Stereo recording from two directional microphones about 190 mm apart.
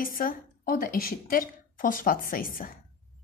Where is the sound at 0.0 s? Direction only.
50° left (ahead or behind).